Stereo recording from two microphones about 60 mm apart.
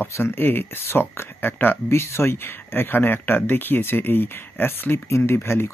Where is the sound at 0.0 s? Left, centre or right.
Left.